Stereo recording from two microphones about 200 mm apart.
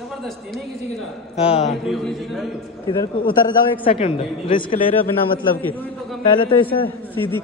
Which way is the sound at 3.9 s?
30° left (ahead or behind).